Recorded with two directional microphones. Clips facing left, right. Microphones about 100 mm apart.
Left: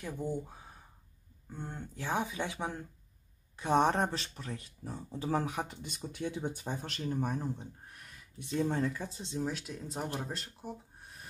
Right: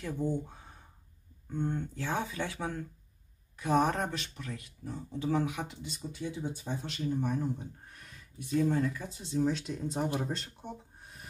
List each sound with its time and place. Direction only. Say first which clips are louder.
0.3 s speech: right 3 dB; 5° left (ahead or behind); by 5.8 s 35° left (ahead or behind)
5.8 s speech: even; 60° left (ahead or behind)
7.9 s a sound: right 1 dB; 5° left (ahead or behind)
8.4 s speech: right 3 dB; 25° left (ahead or behind)
9.4 s speech: right 7 dB; 5° left (ahead or behind)
10.0 s speech: right 4 dB; 10° right (ahead or behind)
10.3 s speech: right 3 dB; 5° left (ahead or behind)